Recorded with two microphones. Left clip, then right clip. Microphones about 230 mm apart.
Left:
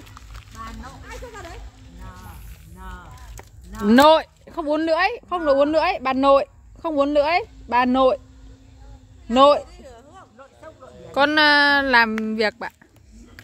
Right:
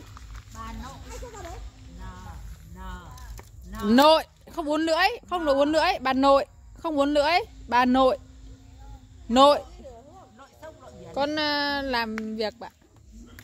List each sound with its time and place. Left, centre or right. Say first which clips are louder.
0.6 s music: left 3 dB; right
2.8 s a sound: left 2 dB; right
3.9 s speech: left 4 dB; centre
9.3 s speech: left 3 dB; centre
10.3 s a sound: even; right
11.1 s speech: left 10 dB; left